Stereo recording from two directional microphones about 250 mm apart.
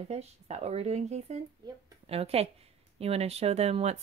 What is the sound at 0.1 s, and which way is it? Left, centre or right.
Speech, right.